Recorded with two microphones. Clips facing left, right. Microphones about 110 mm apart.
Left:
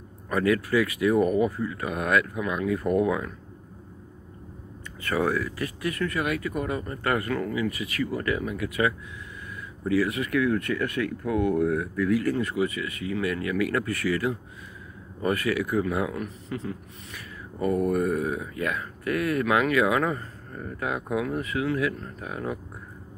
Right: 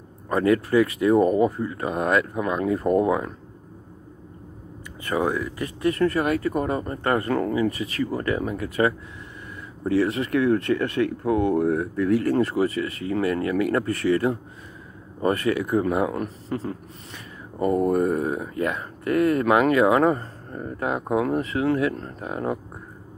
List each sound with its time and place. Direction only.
0.3 s speech: 30° right (ahead or behind)
5.0 s speech: 20° right (ahead or behind)